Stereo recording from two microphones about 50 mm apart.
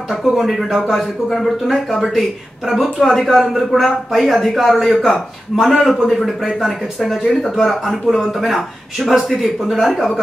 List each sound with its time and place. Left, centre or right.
0.2 s speech: centre